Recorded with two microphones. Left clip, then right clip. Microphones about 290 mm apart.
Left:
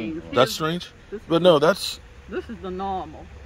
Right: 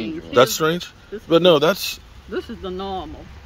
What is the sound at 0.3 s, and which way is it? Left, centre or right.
Speech, centre.